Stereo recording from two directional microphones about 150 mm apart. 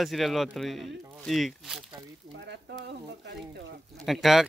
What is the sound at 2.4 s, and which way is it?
Frying, 90° right.